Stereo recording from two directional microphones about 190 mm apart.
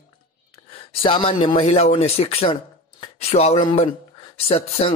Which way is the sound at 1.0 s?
25° left (ahead or behind).